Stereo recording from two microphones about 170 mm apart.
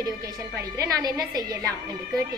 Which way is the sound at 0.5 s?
20° right (ahead or behind).